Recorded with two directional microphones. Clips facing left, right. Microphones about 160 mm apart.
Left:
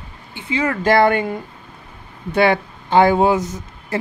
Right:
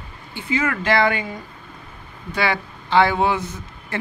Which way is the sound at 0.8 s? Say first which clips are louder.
Left 8 dB; 50° left (ahead or behind).